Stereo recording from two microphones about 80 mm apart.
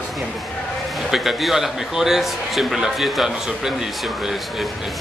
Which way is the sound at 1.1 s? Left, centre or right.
Centre.